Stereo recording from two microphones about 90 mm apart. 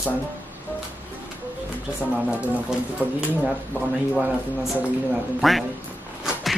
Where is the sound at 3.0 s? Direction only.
20° right (ahead or behind).